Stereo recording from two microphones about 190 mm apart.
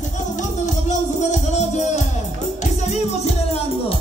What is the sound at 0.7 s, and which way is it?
Music, 40° left (ahead or behind).